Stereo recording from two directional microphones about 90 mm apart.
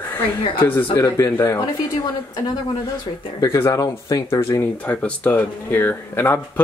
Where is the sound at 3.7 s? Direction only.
40° left (ahead or behind).